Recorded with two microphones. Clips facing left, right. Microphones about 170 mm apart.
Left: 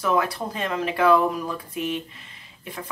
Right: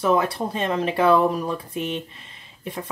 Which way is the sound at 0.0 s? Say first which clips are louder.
Right 3 dB; 25° right (ahead or behind).